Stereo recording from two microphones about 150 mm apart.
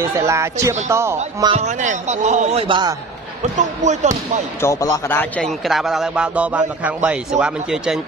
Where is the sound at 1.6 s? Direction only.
55° right (ahead or behind).